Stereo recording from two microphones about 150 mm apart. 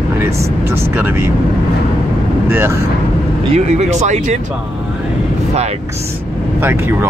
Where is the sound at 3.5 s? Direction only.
50° right (ahead or behind).